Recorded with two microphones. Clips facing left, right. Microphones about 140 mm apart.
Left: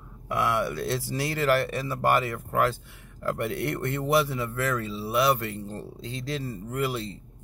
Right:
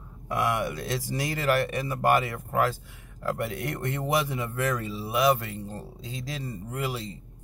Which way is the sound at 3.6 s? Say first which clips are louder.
Left 2 dB; 10° right (ahead or behind).